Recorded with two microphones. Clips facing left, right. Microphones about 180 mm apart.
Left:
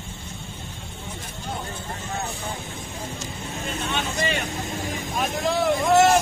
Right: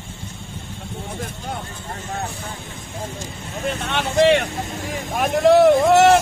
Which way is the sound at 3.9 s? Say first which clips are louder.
Right 12 dB; 70° right (ahead or behind).